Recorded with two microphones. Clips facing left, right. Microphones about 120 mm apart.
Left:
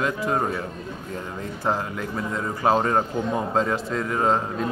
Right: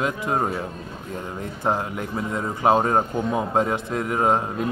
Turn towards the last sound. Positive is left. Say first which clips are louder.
# right 1 dB
turn(degrees=-15)  # may be behind; listen again after turning